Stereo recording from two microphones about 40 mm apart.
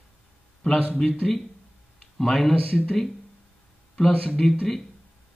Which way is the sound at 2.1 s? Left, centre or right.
Centre.